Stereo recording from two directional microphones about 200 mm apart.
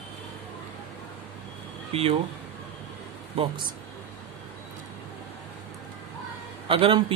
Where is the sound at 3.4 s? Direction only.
30° right (ahead or behind).